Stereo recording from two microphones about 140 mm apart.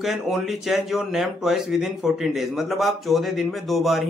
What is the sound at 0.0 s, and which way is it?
Speech, centre (ahead or behind).